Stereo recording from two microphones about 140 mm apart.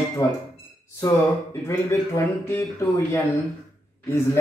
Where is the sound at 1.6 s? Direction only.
20° left (ahead or behind).